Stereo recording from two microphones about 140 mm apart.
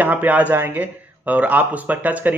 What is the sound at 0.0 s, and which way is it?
A man's voice, 10° right (ahead or behind).